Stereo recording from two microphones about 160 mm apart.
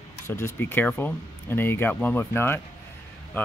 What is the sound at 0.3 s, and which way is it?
Speech, 15° left (ahead or behind).